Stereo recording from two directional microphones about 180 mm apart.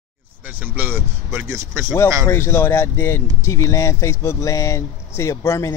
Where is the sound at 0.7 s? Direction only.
10° right (ahead or behind).